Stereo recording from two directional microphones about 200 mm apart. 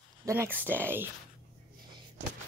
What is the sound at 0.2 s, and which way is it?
Speech, 15° right (ahead or behind).